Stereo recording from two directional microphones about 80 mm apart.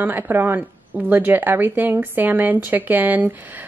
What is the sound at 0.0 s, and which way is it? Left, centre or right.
A woman's voice, right.